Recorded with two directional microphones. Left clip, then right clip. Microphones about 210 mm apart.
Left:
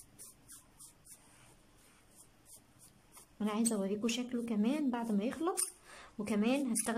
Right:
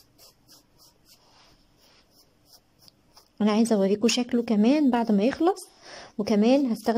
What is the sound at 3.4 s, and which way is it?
A woman's voice, 35° right (ahead or behind).